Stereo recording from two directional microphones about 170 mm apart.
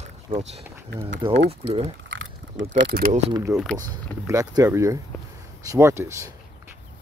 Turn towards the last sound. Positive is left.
turn(degrees=-15)  # may be behind; listen again after turning